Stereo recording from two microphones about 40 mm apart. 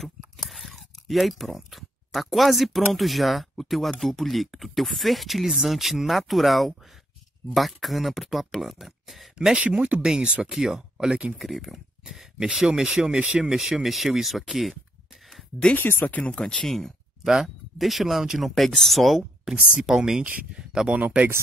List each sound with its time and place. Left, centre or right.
0.0 s speech: centre
9.6 s speech: right
10.0 s speech: centre
13.4 s speech: centre
15.8 s speech: left
16.2 s speech: left
16.4 s speech: centre
17.2 s speech: centre
17.7 s speech: centre
18.4 s speech: centre
19.8 s speech: centre
20.9 s speech: right